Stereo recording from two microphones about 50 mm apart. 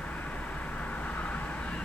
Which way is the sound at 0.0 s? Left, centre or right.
Left.